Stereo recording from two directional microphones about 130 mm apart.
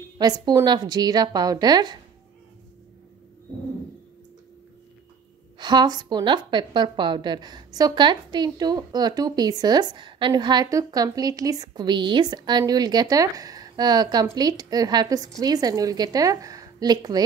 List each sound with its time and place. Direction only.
0.2 s a woman's voice: 30° right (ahead or behind)
5.6 s a woman's voice: 35° right (ahead or behind)